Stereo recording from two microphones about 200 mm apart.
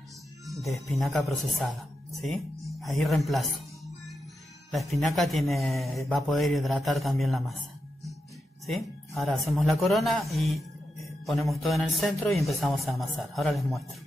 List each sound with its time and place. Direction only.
0.5 s speech: centre (ahead or behind)
4.6 s speech: centre (ahead or behind)
8.6 s speech: centre (ahead or behind)